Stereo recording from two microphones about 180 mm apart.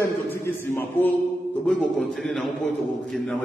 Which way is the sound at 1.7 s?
Centre (ahead or behind).